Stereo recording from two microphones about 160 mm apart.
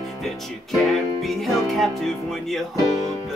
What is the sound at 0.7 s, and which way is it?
Music, centre (ahead or behind).